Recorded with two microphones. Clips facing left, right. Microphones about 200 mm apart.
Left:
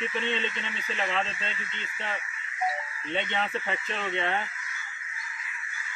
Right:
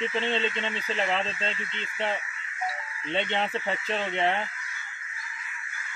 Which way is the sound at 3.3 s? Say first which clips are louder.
Right 2 dB; 30° right (ahead or behind).